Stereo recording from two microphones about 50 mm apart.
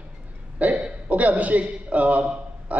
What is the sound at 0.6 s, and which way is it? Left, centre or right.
Cough, right.